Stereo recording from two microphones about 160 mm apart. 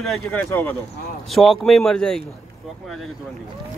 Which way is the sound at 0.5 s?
15° left (ahead or behind).